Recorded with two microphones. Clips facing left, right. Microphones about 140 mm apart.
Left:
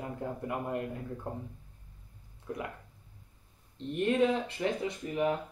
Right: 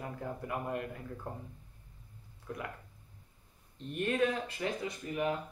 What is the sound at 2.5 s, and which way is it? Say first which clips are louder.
Speech: left 4 dB; 20° left (ahead or behind).